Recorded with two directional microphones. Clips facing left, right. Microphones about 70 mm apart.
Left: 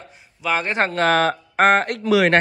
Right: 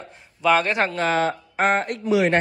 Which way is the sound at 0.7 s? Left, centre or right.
Left.